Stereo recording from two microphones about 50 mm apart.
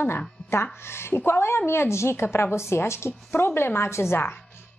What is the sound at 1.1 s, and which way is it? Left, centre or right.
A woman's voice, left.